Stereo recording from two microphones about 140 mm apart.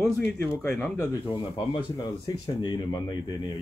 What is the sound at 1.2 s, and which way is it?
Speech, 35° left (ahead or behind).